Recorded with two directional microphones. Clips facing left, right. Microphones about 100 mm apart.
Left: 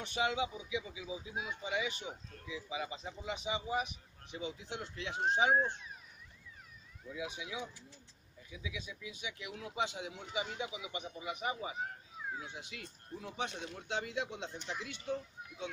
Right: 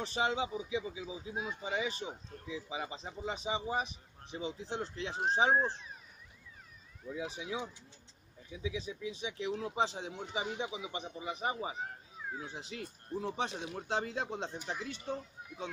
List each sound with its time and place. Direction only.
0.0 s speech: 30° right (ahead or behind)
7.1 s speech: 35° right (ahead or behind)